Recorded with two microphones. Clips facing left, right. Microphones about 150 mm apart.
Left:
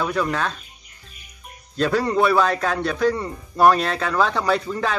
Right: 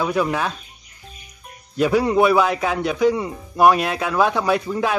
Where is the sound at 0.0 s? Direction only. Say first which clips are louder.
Right 2 dB; 10° right (ahead or behind).